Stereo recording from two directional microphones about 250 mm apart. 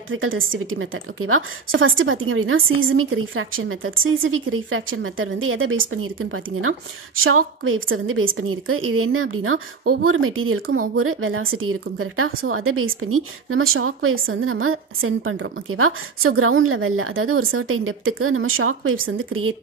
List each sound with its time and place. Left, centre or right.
0.1 s a woman's voice: right